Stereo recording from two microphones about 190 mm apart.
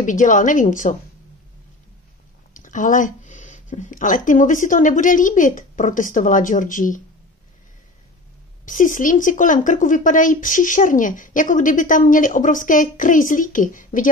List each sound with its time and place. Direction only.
0.0 s speech: 40° left (ahead or behind)
2.5 s speech: 45° left (ahead or behind)
8.6 s speech: 45° left (ahead or behind)